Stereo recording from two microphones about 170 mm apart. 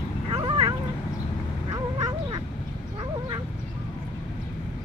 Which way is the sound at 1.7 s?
25° right (ahead or behind).